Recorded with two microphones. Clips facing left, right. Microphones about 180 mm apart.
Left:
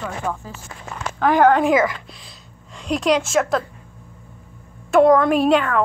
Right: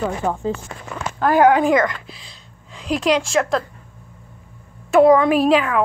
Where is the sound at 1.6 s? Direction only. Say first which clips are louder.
Even; centre (ahead or behind).